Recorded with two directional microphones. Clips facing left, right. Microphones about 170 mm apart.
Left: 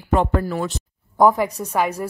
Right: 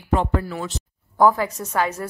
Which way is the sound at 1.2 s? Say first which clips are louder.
Left 2 dB; 15° left (ahead or behind).